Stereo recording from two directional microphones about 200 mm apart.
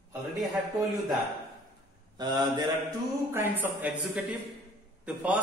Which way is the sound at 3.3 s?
10° right (ahead or behind).